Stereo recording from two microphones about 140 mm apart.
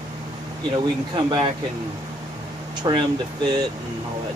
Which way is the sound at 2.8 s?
30° right (ahead or behind).